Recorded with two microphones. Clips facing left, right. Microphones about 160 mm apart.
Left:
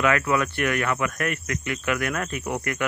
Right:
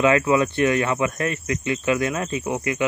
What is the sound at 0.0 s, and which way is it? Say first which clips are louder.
Speech: right 4 dB; 20° right (ahead or behind).